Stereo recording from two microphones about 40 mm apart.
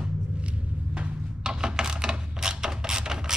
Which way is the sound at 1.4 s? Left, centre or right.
Centre.